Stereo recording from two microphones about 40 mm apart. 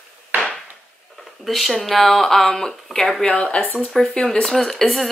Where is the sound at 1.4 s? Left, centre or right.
Centre.